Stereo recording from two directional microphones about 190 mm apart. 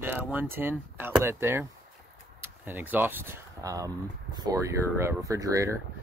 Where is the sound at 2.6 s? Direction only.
10° right (ahead or behind).